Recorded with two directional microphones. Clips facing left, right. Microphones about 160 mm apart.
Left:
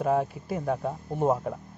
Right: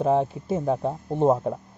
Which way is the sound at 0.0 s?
25° right (ahead or behind).